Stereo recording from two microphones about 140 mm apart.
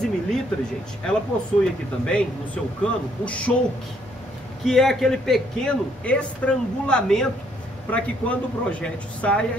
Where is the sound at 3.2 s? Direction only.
10° left (ahead or behind).